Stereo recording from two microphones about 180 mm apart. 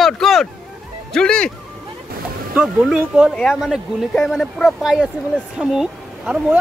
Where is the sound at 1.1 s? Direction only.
5° left (ahead or behind).